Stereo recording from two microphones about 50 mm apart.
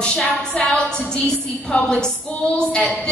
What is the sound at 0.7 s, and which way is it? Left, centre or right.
A woman's voice, centre.